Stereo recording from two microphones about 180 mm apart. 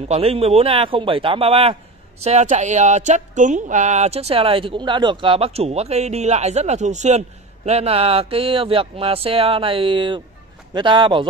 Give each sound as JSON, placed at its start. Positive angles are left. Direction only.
{"t": 0.1, "sound": "a man's voice", "side_deg": -35}